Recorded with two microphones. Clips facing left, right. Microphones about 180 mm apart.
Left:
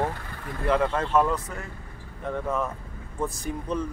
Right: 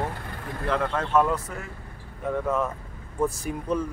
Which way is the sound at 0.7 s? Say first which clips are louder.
Left 2 dB; centre (ahead or behind).